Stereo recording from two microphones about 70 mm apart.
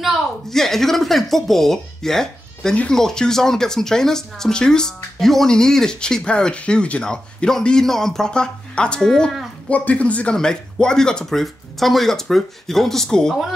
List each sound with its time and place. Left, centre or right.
0.5 s speech: centre
2.7 s speech: centre
9.7 s speech: left